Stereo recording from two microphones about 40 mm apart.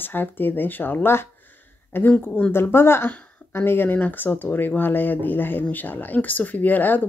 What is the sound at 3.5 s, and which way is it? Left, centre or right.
Speech, left.